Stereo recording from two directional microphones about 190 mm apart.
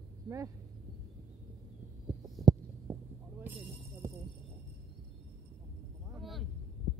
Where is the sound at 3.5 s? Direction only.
10° right (ahead or behind).